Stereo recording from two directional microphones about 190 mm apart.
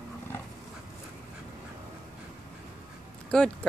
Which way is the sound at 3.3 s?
5° left (ahead or behind).